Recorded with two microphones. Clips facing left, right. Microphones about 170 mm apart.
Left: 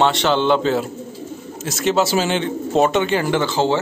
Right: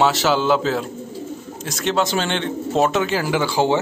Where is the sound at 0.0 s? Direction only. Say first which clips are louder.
Left 1 dB; 5° right (ahead or behind).